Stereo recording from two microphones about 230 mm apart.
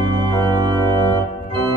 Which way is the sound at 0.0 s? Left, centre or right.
Centre.